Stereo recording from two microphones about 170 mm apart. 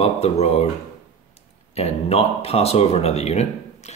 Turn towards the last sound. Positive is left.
turn(degrees=40)  # may be behind; listen again after turning